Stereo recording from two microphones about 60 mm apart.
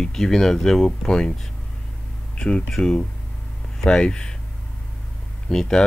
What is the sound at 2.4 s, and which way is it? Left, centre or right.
Speech, centre.